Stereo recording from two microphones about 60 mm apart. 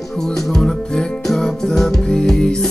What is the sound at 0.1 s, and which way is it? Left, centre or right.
Music, centre.